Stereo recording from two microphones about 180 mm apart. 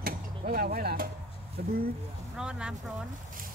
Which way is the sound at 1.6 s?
55° right (ahead or behind).